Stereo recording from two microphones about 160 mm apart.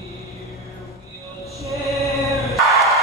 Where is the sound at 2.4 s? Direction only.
Centre (ahead or behind).